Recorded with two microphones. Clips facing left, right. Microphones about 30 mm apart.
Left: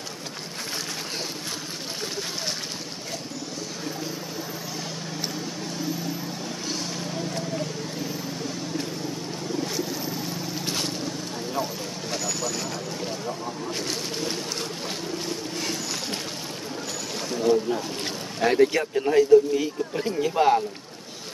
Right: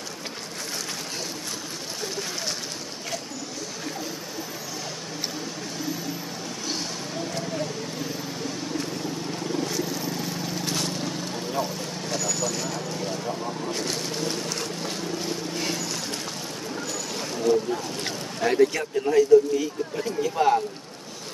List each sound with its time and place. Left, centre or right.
11.6 s vehicle: centre
15.5 s vehicle: centre
17.2 s boat: centre
18.4 s speech: left